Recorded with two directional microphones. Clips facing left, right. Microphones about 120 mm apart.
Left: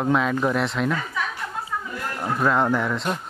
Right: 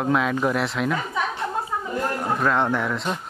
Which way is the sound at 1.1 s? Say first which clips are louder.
Right 4 dB; 25° right (ahead or behind).